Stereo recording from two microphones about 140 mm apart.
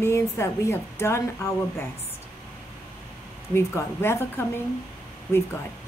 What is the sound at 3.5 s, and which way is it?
Speech, 15° left (ahead or behind).